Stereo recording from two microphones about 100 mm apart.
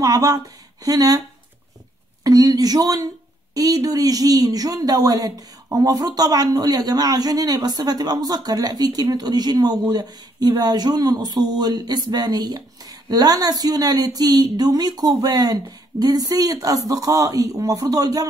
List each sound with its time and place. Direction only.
0.0 s a man's voice: 35° right (ahead or behind)
2.2 s a man's voice: 40° right (ahead or behind)